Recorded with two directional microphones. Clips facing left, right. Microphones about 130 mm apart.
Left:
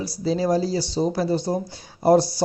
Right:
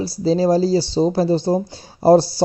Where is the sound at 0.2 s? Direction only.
30° right (ahead or behind).